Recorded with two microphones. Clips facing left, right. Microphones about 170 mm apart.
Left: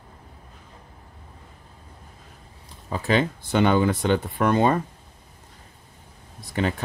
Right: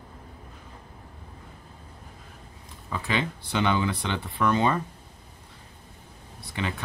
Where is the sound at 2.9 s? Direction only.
40° left (ahead or behind).